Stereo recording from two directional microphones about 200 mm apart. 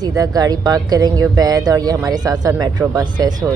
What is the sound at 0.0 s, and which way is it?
Speech, 20° right (ahead or behind).